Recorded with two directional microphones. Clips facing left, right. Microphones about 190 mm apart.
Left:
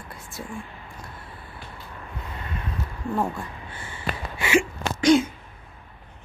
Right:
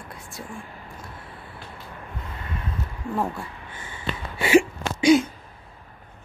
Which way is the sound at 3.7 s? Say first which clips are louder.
Left 1 dB; 15° right (ahead or behind).